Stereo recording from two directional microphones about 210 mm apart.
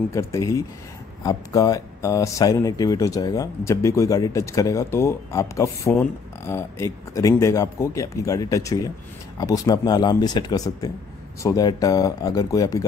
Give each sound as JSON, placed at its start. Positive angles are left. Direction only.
{"t": 0.1, "sound": "speech", "side_deg": 15}